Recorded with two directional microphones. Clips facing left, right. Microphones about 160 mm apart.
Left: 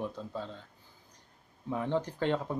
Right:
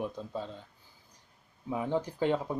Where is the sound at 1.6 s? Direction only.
10° right (ahead or behind).